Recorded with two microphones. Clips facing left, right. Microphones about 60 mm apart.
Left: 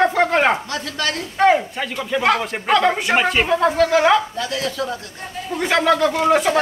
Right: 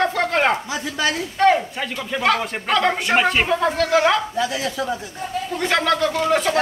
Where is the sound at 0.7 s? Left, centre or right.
Centre.